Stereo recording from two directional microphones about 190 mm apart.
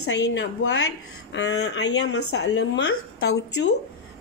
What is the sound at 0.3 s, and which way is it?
Speech, 65° left (ahead or behind).